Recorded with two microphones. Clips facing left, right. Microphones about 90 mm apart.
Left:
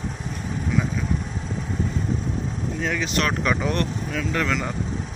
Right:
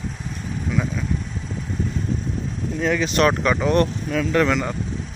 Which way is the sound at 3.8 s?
40° right (ahead or behind).